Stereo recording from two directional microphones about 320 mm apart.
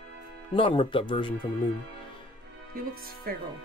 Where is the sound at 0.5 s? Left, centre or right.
Centre.